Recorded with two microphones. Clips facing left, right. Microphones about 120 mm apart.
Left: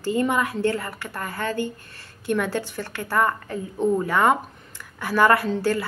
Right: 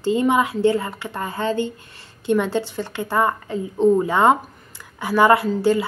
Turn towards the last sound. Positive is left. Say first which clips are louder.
# right 4 dB
turn(degrees=-15)  # may be behind; listen again after turning